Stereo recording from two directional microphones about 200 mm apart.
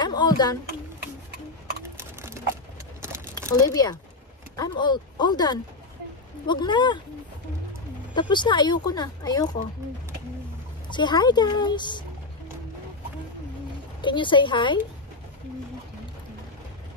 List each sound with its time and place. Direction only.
0.0 s a sound: 20° left (ahead or behind)
2.0 s a sound: 15° right (ahead or behind)
3.5 s speech: 20° left (ahead or behind)
8.1 s speech: 20° left (ahead or behind)
10.9 s speech: 20° left (ahead or behind)
14.0 s speech: 25° left (ahead or behind)